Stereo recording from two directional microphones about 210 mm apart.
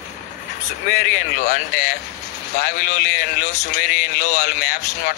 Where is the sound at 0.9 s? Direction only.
35° left (ahead or behind).